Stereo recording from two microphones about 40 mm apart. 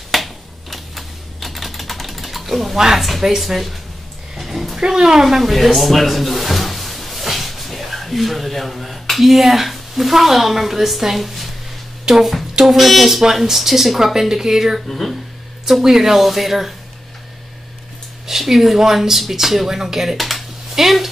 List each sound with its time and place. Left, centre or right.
0.1 s typing: centre
2.8 s speech: centre
4.4 s a sound: centre
4.7 s speech: centre
5.2 s speech: centre
12.1 s speech: centre
12.6 s speech: centre
14.9 s speech: centre
15.6 s speech: centre
18.2 s speech: centre